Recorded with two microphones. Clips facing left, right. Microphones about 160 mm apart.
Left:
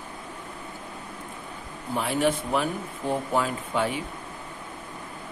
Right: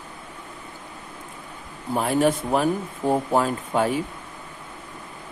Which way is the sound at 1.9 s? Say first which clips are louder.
Right 4 dB; 40° right (ahead or behind).